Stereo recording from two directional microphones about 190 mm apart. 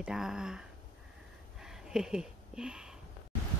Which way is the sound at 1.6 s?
5° right (ahead or behind).